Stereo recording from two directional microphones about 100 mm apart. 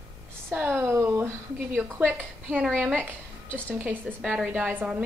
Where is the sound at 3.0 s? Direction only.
20° right (ahead or behind).